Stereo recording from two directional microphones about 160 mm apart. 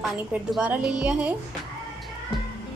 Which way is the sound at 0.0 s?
5° right (ahead or behind).